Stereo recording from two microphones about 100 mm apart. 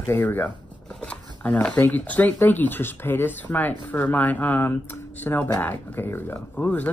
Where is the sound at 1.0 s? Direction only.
15° left (ahead or behind).